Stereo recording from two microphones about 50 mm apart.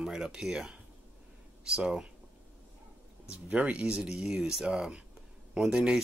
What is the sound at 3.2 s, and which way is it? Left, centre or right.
Speech, right.